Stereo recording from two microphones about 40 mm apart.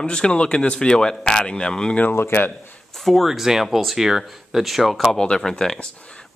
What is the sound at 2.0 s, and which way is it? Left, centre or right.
Speech, left.